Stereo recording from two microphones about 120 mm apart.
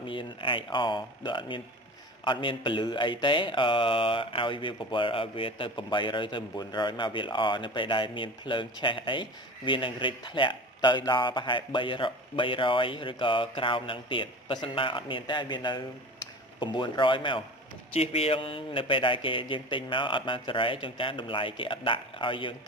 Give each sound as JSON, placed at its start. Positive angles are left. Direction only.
{"t": 0.0, "sound": "speech", "side_deg": 45}
{"t": 17.9, "sound": "speech", "side_deg": 55}